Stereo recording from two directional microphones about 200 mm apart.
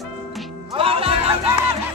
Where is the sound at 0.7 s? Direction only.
30° right (ahead or behind).